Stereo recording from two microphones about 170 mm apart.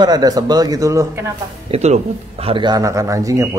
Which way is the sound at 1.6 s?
40° right (ahead or behind).